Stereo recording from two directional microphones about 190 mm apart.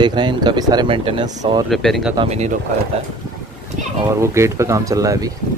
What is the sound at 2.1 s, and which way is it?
Speech, 30° right (ahead or behind).